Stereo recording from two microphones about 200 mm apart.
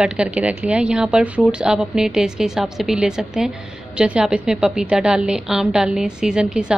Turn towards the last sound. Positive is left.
turn(degrees=-5)  # may be behind; listen again after turning